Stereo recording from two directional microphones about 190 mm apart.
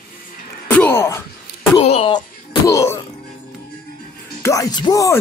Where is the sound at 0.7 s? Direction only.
10° left (ahead or behind).